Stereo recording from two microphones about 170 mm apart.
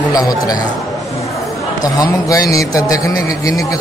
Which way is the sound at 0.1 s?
20° left (ahead or behind).